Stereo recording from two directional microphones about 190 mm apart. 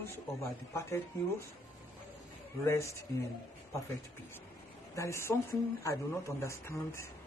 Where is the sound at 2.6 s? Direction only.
15° left (ahead or behind).